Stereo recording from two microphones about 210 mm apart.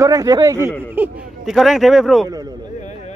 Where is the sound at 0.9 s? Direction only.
5° right (ahead or behind).